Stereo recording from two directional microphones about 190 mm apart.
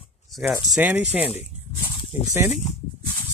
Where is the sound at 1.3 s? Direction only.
35° left (ahead or behind).